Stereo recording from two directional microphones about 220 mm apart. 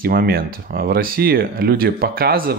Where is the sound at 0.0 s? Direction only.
45° right (ahead or behind).